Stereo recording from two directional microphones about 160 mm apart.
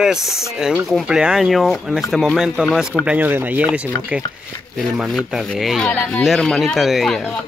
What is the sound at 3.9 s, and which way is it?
Speech, 15° left (ahead or behind).